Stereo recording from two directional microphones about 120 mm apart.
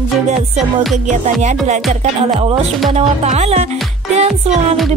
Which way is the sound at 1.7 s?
75° right (ahead or behind).